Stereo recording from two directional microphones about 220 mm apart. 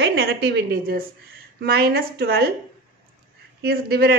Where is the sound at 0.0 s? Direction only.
50° right (ahead or behind).